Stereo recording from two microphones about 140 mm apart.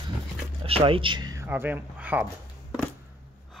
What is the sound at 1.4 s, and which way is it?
Speech, 15° right (ahead or behind).